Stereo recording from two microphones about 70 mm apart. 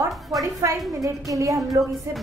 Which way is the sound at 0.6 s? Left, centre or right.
Right.